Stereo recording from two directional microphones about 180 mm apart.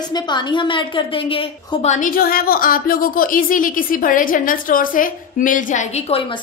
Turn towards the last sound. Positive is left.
turn(degrees=40)  # may be behind; listen again after turning